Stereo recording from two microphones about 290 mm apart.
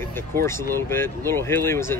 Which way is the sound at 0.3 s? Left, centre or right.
Right.